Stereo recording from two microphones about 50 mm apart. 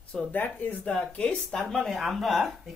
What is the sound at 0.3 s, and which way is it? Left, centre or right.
Speech, left.